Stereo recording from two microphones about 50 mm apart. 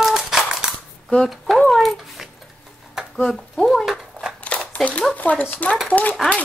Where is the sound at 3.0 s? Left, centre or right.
Centre.